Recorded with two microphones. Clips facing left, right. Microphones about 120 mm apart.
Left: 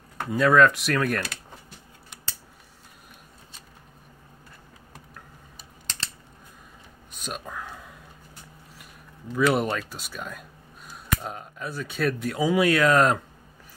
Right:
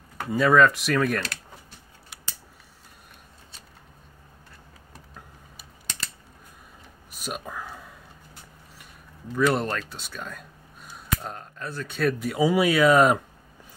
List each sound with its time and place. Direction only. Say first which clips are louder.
0.3 s speech: even; centre (ahead or behind)
5.1 s scissors: even; 10° right (ahead or behind)
7.1 s a sound: right 1 dB; 5° right (ahead or behind)
9.3 s speech: left 1 dB; 5° left (ahead or behind)